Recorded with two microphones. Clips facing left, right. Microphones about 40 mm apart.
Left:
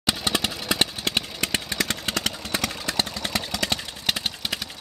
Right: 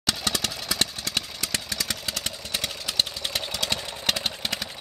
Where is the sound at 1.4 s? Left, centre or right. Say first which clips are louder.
Left 4 dB; left.